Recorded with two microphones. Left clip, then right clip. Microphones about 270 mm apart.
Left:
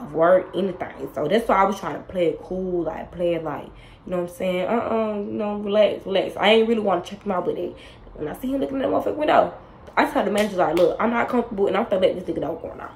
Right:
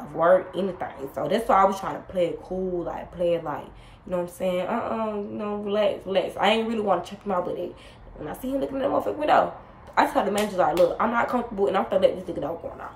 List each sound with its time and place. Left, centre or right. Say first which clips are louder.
0.2 s a woman's voice: left 2 dB; centre